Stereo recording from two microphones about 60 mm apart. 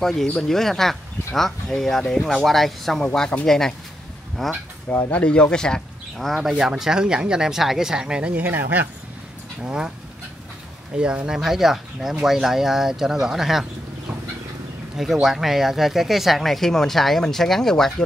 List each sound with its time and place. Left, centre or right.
0.0 s speech: centre
3.1 s speech: centre
3.4 s speech: centre
4.8 s speech: left
6.1 s speech: centre
8.4 s speech: right
9.6 s speech: centre
15.2 s speech: centre